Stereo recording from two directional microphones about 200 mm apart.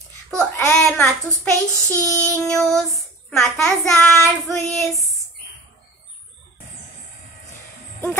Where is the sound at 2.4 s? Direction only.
Centre (ahead or behind).